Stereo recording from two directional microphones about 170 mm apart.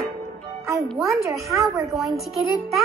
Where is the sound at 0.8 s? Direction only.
Centre (ahead or behind).